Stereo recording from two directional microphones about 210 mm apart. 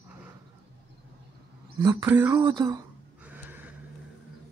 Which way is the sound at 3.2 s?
10° right (ahead or behind).